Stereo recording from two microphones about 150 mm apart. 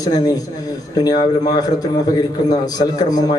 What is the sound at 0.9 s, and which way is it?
A man's voice, 25° left (ahead or behind).